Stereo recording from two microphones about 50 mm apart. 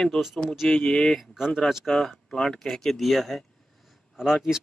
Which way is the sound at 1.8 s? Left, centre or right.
Centre.